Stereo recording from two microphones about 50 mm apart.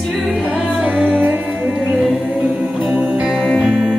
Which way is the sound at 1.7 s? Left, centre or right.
Centre.